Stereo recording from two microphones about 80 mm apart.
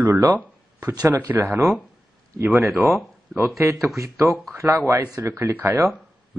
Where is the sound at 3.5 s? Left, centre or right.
Right.